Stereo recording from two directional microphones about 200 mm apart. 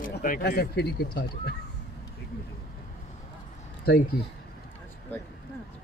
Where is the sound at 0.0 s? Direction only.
45° left (ahead or behind).